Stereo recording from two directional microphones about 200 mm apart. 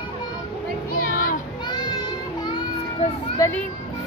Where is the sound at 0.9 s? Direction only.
45° left (ahead or behind).